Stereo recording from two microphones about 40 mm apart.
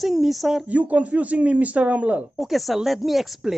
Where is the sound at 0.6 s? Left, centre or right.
Right.